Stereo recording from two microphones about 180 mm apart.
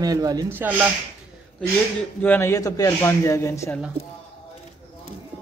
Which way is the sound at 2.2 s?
10° left (ahead or behind).